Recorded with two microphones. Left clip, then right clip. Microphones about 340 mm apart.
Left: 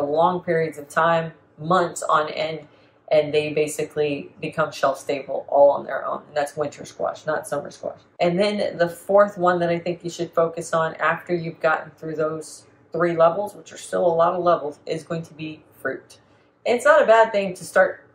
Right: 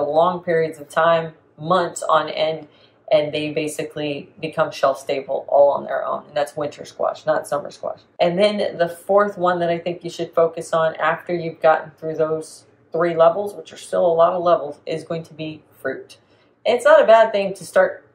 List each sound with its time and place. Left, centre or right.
0.1 s speech: centre